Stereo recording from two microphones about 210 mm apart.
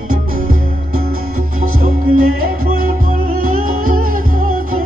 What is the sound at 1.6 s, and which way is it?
Music, 40° right (ahead or behind).